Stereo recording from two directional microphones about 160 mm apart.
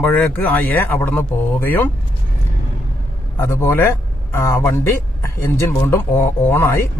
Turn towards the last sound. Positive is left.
turn(degrees=15)  # may be behind; listen again after turning